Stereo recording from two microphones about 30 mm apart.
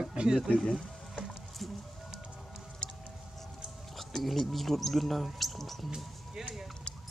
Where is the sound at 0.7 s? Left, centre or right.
Centre.